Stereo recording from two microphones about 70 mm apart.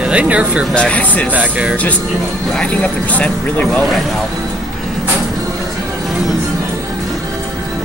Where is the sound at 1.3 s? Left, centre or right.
Centre.